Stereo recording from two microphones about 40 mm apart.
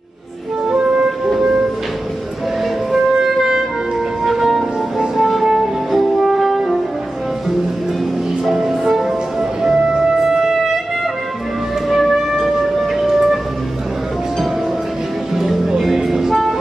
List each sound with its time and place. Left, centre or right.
0.7 s music: right
2.9 s music: centre
8.5 s music: centre
11.9 s music: centre
15.3 s music: centre